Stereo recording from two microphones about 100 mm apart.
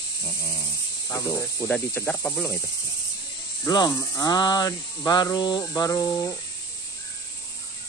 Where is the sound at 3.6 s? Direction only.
45° left (ahead or behind).